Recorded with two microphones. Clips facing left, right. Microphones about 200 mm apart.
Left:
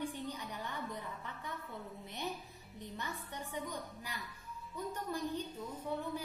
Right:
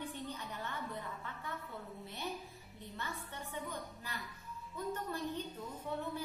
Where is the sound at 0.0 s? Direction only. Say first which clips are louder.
Left 3 dB; 10° left (ahead or behind).